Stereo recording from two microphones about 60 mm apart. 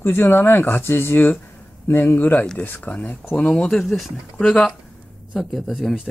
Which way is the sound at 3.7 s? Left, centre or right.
Centre.